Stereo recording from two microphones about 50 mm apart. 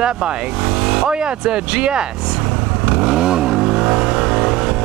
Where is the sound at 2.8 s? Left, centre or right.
Centre.